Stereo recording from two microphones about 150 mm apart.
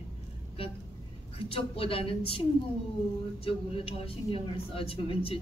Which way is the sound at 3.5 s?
40° left (ahead or behind).